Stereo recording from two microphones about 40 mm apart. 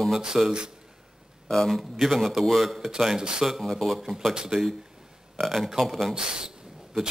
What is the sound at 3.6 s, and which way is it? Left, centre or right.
A man's voice, centre.